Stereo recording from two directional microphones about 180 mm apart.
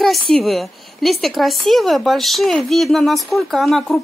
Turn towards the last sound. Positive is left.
turn(degrees=0)  # may be behind; listen again after turning